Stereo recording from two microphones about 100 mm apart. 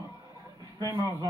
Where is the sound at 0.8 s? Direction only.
45° right (ahead or behind).